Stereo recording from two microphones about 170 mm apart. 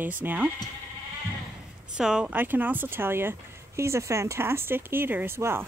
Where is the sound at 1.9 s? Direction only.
5° right (ahead or behind).